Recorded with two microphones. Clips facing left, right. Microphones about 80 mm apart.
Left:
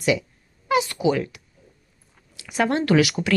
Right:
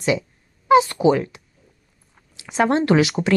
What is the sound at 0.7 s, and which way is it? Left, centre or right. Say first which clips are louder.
Speech: right 6 dB; right.